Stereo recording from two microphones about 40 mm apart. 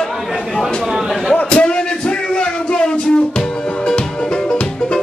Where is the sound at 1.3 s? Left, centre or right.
Left.